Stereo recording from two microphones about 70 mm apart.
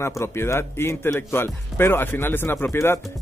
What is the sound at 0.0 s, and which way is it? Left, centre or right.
Speech, left.